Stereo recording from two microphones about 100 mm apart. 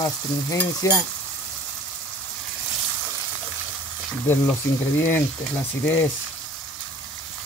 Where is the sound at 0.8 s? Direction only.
30° left (ahead or behind).